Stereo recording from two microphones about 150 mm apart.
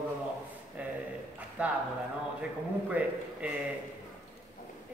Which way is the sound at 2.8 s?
10° right (ahead or behind).